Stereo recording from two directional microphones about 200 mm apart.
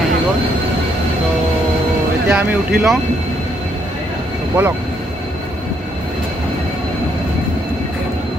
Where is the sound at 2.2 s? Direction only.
5° right (ahead or behind).